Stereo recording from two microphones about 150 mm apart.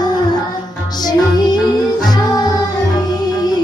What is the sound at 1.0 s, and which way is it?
Music, 30° left (ahead or behind).